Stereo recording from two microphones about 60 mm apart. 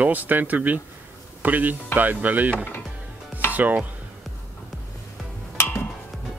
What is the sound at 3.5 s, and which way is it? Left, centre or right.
Chopping, right.